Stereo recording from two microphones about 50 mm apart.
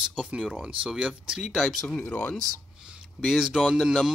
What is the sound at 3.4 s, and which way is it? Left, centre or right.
Speech, centre.